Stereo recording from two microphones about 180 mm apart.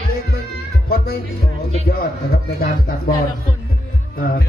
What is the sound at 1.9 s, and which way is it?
A man's voice, 60° left (ahead or behind).